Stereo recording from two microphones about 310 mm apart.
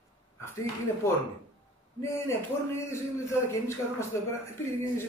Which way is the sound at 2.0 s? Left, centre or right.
Centre.